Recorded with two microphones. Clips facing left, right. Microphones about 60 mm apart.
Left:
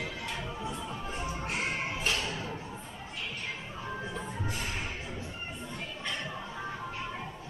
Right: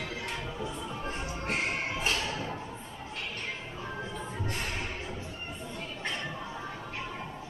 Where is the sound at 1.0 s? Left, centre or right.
Right.